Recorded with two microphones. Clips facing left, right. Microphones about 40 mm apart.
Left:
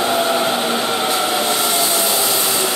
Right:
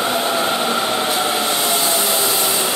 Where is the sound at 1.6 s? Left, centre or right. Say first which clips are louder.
Even; centre.